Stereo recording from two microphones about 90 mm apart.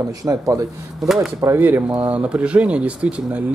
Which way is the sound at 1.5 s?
25° right (ahead or behind).